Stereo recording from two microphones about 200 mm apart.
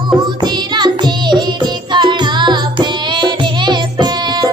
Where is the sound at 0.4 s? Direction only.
20° right (ahead or behind).